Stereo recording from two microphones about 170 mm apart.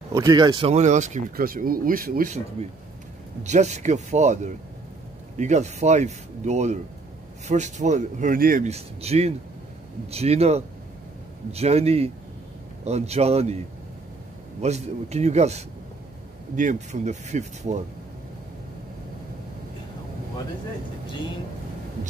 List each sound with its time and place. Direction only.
0.1 s speech: 20° right (ahead or behind)
0.7 s speech: 45° right (ahead or behind)
1.3 s speech: 60° right (ahead or behind)
3.4 s speech: 45° right (ahead or behind)
8.6 s a man's voice: 40° right (ahead or behind)
14.6 s a man's voice: 40° right (ahead or behind)